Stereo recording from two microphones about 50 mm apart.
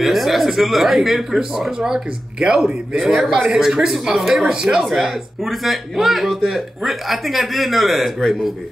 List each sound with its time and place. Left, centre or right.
0.0 s speech: centre